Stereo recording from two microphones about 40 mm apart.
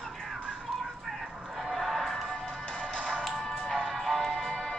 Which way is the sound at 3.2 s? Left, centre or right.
Centre.